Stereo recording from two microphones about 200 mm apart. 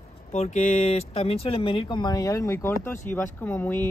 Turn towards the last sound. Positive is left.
turn(degrees=10)  # may be behind; listen again after turning